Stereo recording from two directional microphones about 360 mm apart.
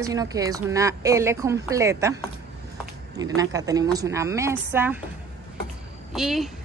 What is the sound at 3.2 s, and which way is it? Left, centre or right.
Speech, centre.